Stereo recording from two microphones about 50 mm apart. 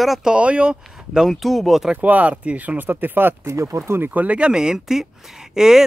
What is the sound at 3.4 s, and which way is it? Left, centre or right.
Speech, right.